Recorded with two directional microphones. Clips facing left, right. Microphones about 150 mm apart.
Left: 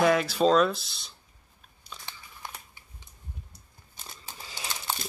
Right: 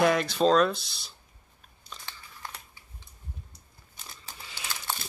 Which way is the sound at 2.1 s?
15° left (ahead or behind).